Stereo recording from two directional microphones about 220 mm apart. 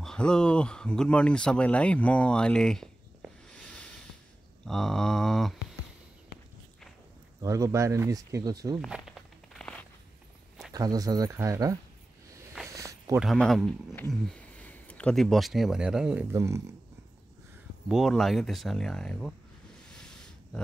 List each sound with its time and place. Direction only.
0.0 s speech: 5° left (ahead or behind)
7.4 s speech: 15° right (ahead or behind)
8.8 s walk: centre (ahead or behind)
10.7 s speech: 15° right (ahead or behind)
12.6 s a sound: 15° right (ahead or behind)
13.2 s speech: centre (ahead or behind)
17.8 s speech: centre (ahead or behind)
19.9 s a sound: 5° left (ahead or behind)